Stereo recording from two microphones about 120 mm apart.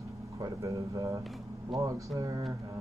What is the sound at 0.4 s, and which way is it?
Speech, 25° right (ahead or behind).